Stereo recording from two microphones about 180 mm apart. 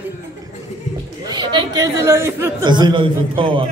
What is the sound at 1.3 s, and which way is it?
A man's voice, 25° right (ahead or behind).